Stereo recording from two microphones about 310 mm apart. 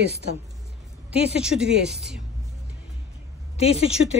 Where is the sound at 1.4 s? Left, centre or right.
Centre.